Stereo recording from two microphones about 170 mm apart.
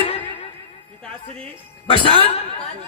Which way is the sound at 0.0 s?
35° left (ahead or behind).